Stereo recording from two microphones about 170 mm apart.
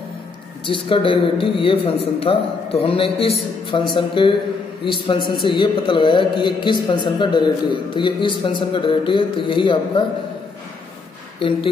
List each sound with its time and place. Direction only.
0.7 s speech: 30° left (ahead or behind)
11.3 s speech: 30° left (ahead or behind)